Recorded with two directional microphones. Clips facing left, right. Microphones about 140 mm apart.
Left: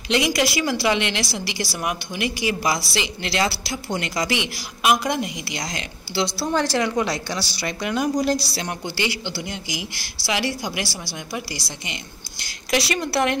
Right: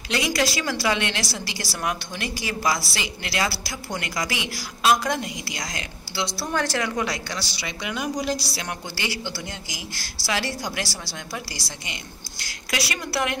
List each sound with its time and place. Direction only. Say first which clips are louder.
0.1 s a woman's voice: left 3 dB; 20° left (ahead or behind)
7.6 s speech: left 6 dB; centre (ahead or behind)
8.5 s a woman's voice: left 5 dB; 20° left (ahead or behind)